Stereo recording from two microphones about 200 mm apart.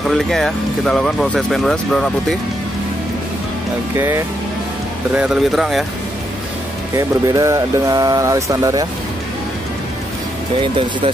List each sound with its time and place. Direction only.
0.1 s speech: centre (ahead or behind)
3.9 s speech: 15° right (ahead or behind)
7.0 s speech: 15° right (ahead or behind)